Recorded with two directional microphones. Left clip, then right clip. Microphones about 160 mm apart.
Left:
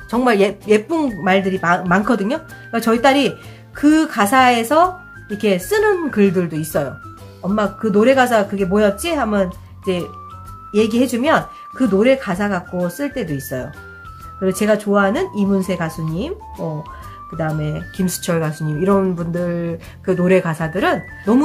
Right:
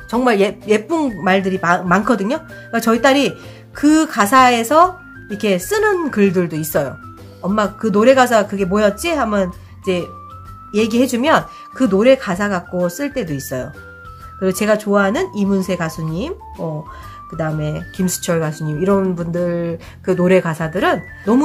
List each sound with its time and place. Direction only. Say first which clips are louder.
0.1 s speech: even; 10° right (ahead or behind)
14.4 s speech: right 1 dB; 20° right (ahead or behind)
17.4 s speech: right 1 dB; 20° right (ahead or behind)